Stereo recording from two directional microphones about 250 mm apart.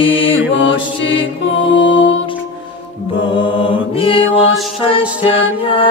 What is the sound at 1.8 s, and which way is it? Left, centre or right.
Music, left.